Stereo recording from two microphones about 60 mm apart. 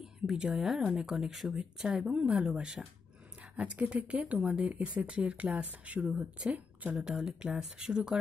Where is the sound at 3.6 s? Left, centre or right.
Centre.